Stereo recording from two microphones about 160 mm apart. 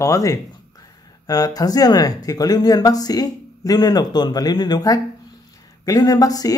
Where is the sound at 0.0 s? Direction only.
20° left (ahead or behind).